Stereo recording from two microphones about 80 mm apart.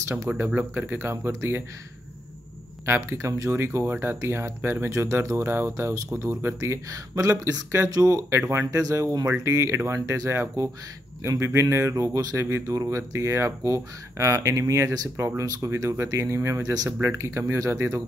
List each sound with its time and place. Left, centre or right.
0.6 s speech: right
2.9 s speech: right
8.3 s speech: right